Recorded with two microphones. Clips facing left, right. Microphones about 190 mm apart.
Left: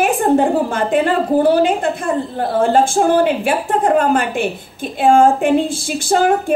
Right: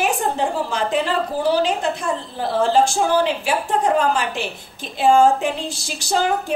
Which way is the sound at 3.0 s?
55° left (ahead or behind).